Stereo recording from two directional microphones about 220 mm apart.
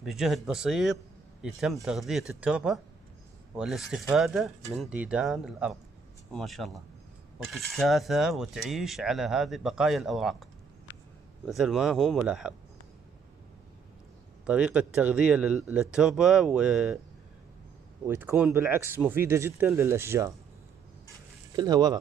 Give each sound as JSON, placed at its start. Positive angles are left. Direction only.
{"t": 0.0, "sound": "speech", "side_deg": 0}
{"t": 14.4, "sound": "speech", "side_deg": -5}
{"t": 18.0, "sound": "speech", "side_deg": -10}
{"t": 21.5, "sound": "speech", "side_deg": -15}